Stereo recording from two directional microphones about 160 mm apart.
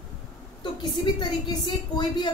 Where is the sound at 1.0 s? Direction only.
30° left (ahead or behind).